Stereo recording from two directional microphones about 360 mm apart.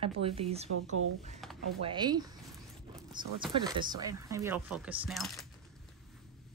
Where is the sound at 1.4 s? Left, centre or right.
Centre.